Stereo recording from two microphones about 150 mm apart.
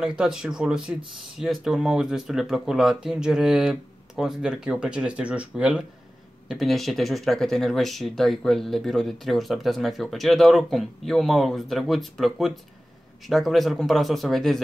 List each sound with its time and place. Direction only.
0.0 s speech: 5° right (ahead or behind)